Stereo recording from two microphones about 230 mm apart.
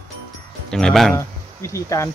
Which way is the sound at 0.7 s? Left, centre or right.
Centre.